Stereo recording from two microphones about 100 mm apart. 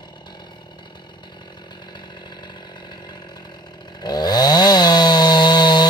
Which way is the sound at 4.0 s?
45° left (ahead or behind).